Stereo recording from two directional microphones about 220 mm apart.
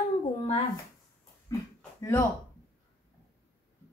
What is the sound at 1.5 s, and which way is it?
Speech, 15° left (ahead or behind).